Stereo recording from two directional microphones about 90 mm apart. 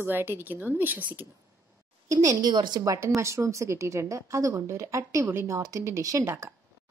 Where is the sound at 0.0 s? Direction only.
25° right (ahead or behind).